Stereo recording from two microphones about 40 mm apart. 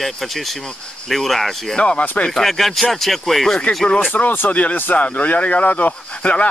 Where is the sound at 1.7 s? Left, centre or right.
Left.